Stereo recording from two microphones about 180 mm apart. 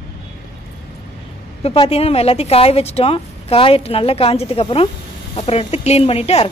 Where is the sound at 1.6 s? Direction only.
35° left (ahead or behind).